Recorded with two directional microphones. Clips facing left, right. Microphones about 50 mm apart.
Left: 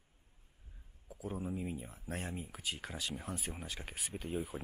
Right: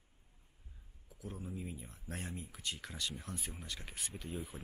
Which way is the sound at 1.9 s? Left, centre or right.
Centre.